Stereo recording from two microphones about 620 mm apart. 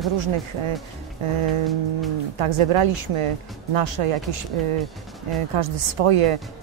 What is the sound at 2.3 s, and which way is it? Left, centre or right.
Speech, right.